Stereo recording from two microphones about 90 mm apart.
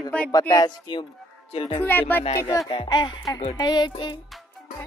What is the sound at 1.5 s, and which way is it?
Speech, 90° left.